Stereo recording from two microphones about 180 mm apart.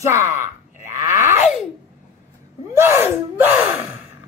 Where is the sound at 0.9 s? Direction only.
45° left (ahead or behind).